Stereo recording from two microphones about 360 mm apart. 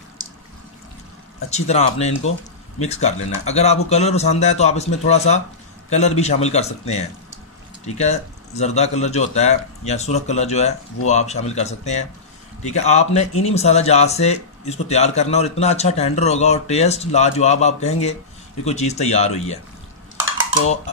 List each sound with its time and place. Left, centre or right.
1.5 s a man's voice: centre